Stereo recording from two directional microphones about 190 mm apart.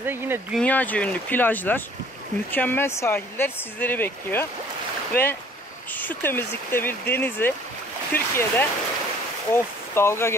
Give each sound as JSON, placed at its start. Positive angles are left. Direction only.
{"t": 0.0, "sound": "speech", "side_deg": -10}
{"t": 0.6, "sound": "speech", "side_deg": 10}
{"t": 5.1, "sound": "speech", "side_deg": 50}
{"t": 5.9, "sound": "speech", "side_deg": 10}